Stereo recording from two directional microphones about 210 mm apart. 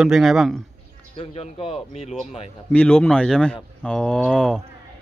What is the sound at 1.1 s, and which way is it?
Speech, 30° left (ahead or behind).